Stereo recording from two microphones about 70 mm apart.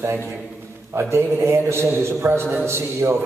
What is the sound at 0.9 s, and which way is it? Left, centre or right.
A man's voice, right.